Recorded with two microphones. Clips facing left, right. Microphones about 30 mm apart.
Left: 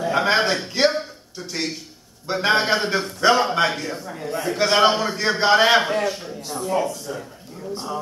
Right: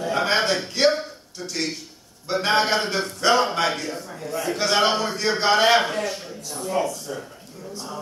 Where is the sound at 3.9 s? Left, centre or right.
Left.